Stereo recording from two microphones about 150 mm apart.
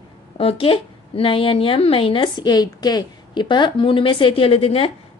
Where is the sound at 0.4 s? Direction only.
40° left (ahead or behind).